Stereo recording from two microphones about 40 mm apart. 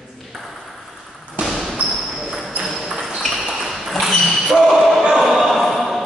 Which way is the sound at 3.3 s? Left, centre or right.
Centre.